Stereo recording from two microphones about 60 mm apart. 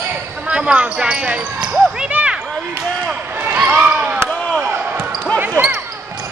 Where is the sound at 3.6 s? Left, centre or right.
Centre.